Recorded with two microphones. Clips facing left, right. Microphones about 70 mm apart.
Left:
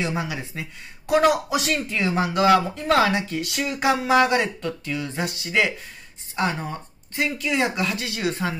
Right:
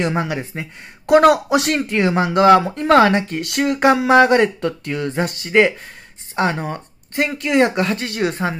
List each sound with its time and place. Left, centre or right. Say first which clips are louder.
0.0 s speech: right 6 dB; right
1.0 s a woman's voice: right 7 dB; right
1.8 s a woman's voice: right 6 dB; right
2.3 s speech: right 6 dB; right
2.6 s a woman's voice: right 6 dB; right
2.9 s speech: right 7 dB; right